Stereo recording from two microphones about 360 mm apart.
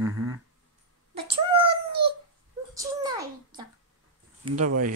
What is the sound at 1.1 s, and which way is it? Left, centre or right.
Cat, centre.